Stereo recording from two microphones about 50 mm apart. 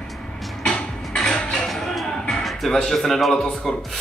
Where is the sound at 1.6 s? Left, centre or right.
Centre.